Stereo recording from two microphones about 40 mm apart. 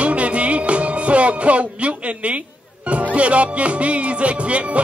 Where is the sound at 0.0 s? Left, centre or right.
Right.